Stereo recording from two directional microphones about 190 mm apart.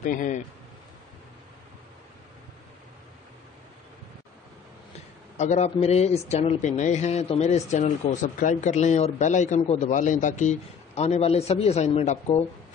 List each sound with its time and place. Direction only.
0.0 s a man's voice: 45° left (ahead or behind)
5.4 s a man's voice: 35° left (ahead or behind)